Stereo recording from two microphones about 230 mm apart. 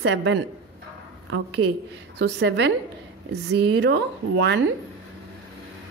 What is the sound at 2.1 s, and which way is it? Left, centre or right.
Speech, right.